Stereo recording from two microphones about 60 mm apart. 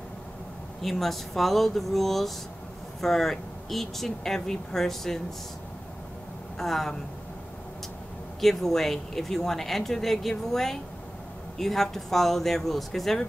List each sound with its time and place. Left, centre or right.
0.8 s a woman's voice: centre
6.6 s a woman's voice: centre
8.4 s a woman's voice: centre